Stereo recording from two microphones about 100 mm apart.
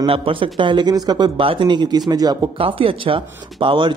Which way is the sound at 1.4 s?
60° right (ahead or behind).